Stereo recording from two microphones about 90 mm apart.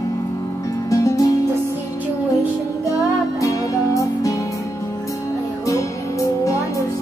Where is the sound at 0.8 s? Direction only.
40° left (ahead or behind).